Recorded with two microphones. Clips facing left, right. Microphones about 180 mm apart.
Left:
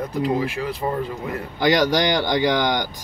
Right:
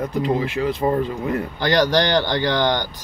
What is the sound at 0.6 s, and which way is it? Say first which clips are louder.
Speech: right 5 dB; 30° right (ahead or behind).